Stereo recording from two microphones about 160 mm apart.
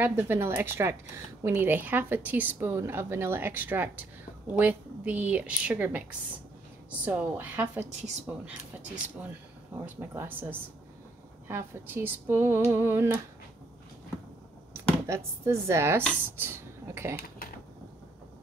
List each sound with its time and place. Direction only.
0.0 s speech: 15° right (ahead or behind)
11.4 s speech: 15° right (ahead or behind)
15.0 s speech: 15° right (ahead or behind)
16.3 s a sound: 15° right (ahead or behind)